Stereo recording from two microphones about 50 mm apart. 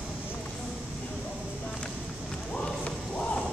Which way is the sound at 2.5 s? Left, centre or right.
Left.